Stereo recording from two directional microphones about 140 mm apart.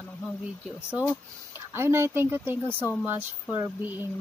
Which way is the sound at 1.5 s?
20° right (ahead or behind).